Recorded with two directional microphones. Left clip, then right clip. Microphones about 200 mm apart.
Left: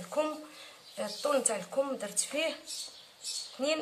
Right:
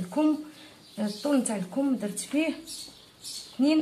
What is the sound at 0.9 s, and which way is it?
A woman's voice, 25° left (ahead or behind).